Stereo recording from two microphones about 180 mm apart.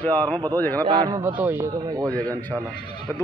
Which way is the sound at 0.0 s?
10° left (ahead or behind).